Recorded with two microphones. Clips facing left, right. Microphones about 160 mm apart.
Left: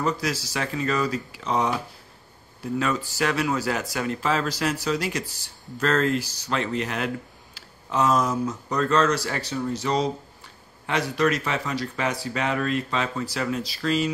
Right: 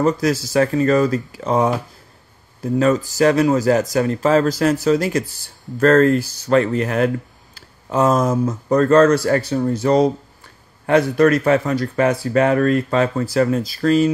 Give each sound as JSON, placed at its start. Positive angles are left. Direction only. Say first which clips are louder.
{"t": 0.0, "sound": "speech", "louder": "right 9 dB", "side_deg": -50}